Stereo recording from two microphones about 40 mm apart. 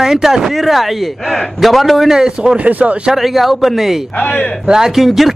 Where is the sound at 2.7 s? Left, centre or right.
Right.